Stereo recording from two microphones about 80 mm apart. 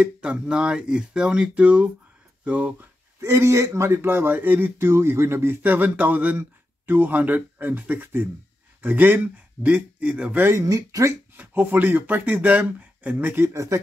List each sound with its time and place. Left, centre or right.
0.0 s speech: centre
3.2 s speech: right; by 10.4 s centre
10.4 s speech: right
11.3 s speech: right
13.5 s speech: right